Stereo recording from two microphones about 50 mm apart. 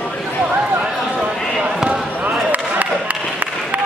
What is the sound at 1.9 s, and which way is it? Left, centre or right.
Basketball bounce, right.